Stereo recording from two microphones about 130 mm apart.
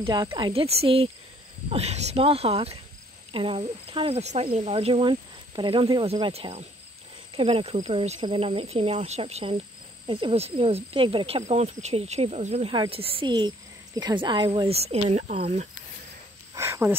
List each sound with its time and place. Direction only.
0.0 s speech: 35° right (ahead or behind)
0.5 s speech: 50° right (ahead or behind)
6.3 s speech: 50° right (ahead or behind)
12.7 s speech: 40° right (ahead or behind)
14.7 s speech: 50° right (ahead or behind)
16.5 s a sound: 20° right (ahead or behind)